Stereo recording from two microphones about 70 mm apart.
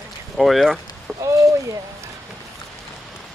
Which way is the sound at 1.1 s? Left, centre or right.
Right.